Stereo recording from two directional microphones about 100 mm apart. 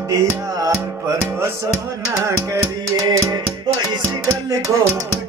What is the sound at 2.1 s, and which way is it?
Music, 30° right (ahead or behind).